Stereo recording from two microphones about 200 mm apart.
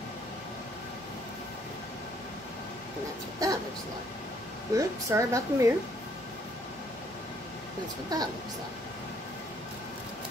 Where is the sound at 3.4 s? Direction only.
20° right (ahead or behind).